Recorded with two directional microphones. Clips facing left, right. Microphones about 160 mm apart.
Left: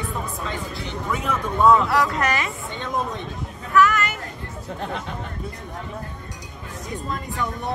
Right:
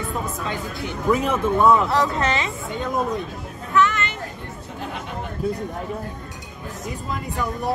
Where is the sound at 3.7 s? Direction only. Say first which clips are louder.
Left 2 dB; 25° right (ahead or behind).